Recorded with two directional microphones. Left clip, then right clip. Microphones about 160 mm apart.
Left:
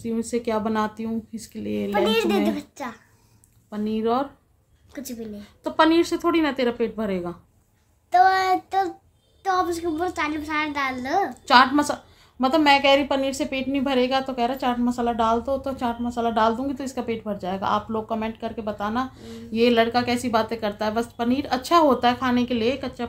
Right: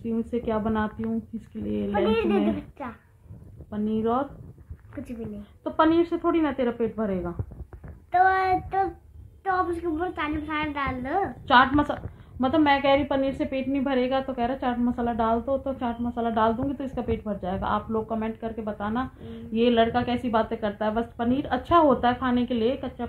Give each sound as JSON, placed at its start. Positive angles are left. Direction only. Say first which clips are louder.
{"t": 0.0, "sound": "a woman's voice", "louder": "left 3 dB", "side_deg": 15}
{"t": 2.0, "sound": "a child's voice", "louder": "left 1 dB", "side_deg": 25}
{"t": 3.7, "sound": "a woman's voice", "louder": "left 2 dB", "side_deg": 10}
{"t": 5.6, "sound": "a woman's voice", "louder": "left 3 dB", "side_deg": 15}
{"t": 8.1, "sound": "a child's voice", "louder": "left 3 dB", "side_deg": 30}
{"t": 11.5, "sound": "a woman's voice", "louder": "left 3 dB", "side_deg": 10}